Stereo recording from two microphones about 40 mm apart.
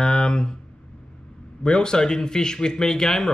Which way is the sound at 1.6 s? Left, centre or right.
Centre.